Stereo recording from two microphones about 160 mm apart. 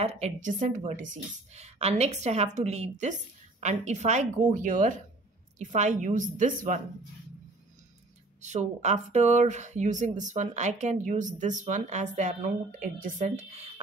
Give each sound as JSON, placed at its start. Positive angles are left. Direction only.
{"t": 0.0, "sound": "speech", "side_deg": -45}
{"t": 8.4, "sound": "speech", "side_deg": -45}